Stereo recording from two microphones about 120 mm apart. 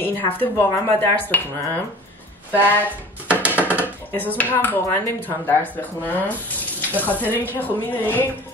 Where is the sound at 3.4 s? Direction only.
15° right (ahead or behind).